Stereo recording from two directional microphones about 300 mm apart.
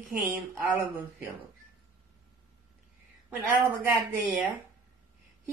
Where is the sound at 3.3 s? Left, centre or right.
Centre.